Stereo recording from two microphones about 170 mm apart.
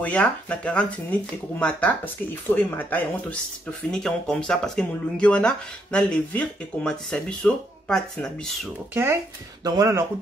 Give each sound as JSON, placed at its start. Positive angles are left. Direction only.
{"t": 0.0, "sound": "speech", "side_deg": 10}
{"t": 8.9, "sound": "speech", "side_deg": -15}